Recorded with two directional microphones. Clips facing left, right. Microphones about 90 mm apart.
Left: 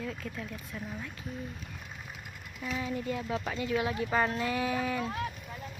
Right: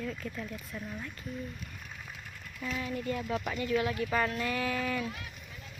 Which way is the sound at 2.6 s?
15° left (ahead or behind).